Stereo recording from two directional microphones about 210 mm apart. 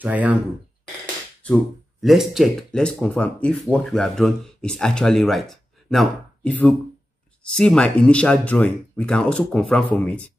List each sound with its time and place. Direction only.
0.0 s speech: 5° right (ahead or behind)
1.4 s speech: centre (ahead or behind)